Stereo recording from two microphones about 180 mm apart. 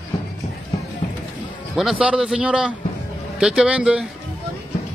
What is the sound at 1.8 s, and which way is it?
Speech, 5° right (ahead or behind).